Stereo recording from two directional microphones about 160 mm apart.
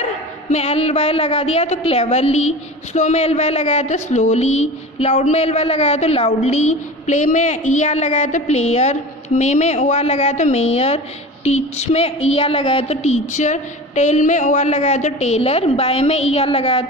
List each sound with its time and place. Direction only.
0.5 s a woman's voice: 45° left (ahead or behind)